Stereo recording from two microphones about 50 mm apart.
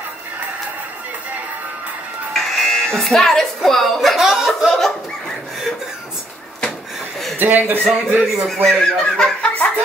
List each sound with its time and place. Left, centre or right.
2.3 s music: centre
7.3 s speech: right
8.6 s speech: centre